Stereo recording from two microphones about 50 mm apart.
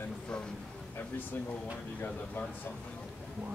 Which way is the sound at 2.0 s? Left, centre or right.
Left.